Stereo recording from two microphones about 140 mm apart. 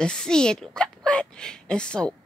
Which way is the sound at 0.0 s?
5° left (ahead or behind).